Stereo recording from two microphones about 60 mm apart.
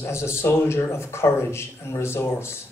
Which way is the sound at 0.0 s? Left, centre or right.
Left.